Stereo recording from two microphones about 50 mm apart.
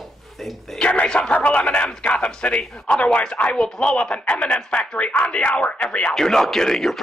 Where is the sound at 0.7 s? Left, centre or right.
Left.